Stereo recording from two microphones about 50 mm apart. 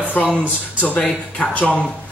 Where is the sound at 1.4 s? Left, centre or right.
Left.